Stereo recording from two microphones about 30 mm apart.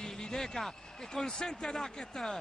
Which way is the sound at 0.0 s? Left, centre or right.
Left.